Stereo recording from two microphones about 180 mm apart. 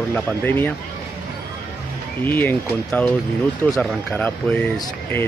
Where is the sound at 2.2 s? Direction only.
10° left (ahead or behind).